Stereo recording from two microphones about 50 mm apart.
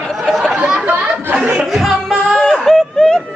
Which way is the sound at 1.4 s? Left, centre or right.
Right.